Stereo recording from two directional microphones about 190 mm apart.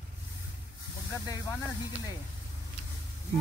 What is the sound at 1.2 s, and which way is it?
Speech, 20° left (ahead or behind).